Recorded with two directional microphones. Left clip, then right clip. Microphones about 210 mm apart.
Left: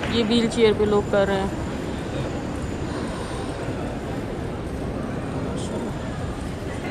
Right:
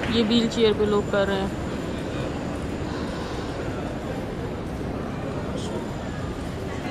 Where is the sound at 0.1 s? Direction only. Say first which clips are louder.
Left 1 dB; 20° right (ahead or behind).